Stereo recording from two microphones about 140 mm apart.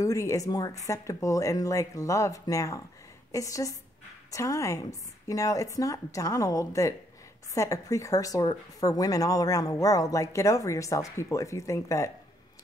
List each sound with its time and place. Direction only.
0.0 s a woman's voice: 20° left (ahead or behind)